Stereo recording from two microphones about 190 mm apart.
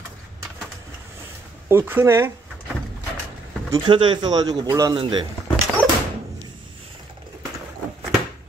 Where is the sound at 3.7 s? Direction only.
25° right (ahead or behind).